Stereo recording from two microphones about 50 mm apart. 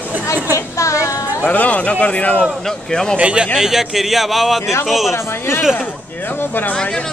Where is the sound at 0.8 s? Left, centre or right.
Left.